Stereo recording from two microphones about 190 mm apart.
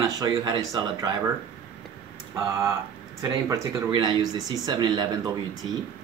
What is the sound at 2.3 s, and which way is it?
Speech, 15° right (ahead or behind).